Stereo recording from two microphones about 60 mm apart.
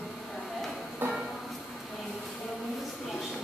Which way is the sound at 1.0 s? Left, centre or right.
Right.